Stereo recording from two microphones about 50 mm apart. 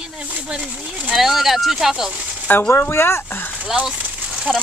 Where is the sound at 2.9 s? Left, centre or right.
Left.